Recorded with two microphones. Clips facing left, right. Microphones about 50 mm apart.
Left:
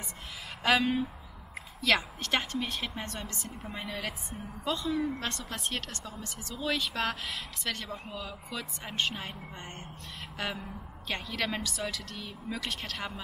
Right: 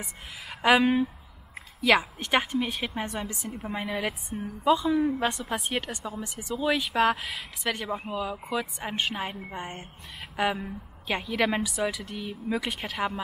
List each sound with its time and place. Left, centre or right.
0.6 s a woman's voice: centre